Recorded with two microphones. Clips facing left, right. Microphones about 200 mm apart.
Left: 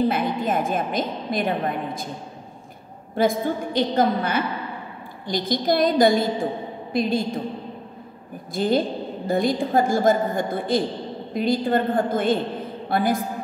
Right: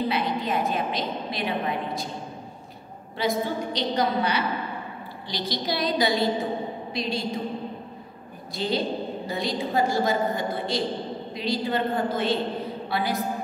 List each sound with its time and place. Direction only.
0.1 s a woman's voice: 50° left (ahead or behind)
3.2 s a woman's voice: 50° left (ahead or behind)
8.5 s a woman's voice: 50° left (ahead or behind)